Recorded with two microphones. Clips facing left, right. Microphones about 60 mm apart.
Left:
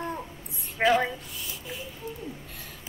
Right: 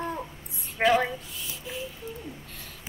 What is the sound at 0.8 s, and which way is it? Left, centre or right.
Speech, centre.